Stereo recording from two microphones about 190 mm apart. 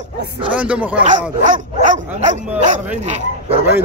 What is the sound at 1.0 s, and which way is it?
Speech, 40° right (ahead or behind).